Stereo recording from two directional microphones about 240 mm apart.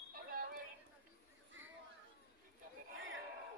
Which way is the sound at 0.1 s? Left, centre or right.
Right.